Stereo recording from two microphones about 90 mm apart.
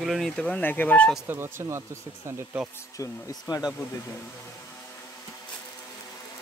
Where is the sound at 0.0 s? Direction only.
Centre (ahead or behind).